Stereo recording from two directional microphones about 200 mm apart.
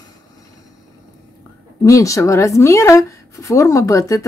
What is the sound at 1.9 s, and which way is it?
A woman's voice, 15° left (ahead or behind).